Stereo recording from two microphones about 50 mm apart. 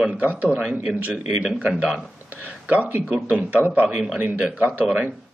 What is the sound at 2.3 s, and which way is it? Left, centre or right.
Speech, right.